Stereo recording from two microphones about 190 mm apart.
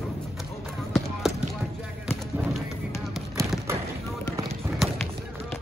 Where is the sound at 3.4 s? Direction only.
15° right (ahead or behind).